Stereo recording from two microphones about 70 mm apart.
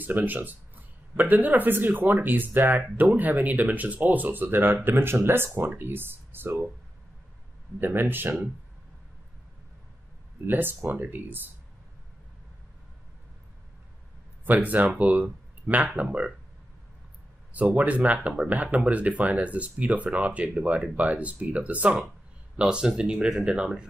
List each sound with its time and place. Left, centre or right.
0.0 s speech: right
7.8 s speech: right
10.4 s speech: right
14.4 s speech: right
17.5 s speech: right